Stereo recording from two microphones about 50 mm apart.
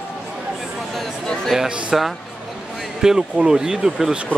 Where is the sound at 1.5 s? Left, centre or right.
Centre.